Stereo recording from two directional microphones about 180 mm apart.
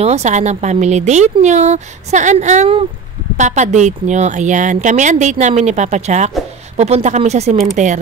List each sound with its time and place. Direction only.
0.0 s speech: 40° right (ahead or behind)